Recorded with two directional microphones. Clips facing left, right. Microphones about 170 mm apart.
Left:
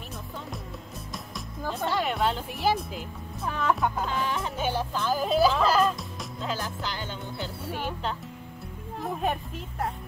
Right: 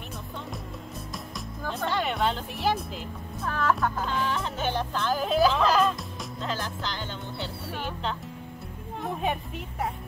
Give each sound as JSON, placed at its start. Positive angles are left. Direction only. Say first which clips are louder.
{"t": 1.7, "sound": "speech", "louder": "left 1 dB", "side_deg": 0}
{"t": 3.9, "sound": "music", "louder": "even", "side_deg": 5}
{"t": 6.4, "sound": "speech", "louder": "even", "side_deg": 5}
{"t": 9.0, "sound": "music", "louder": "even", "side_deg": 0}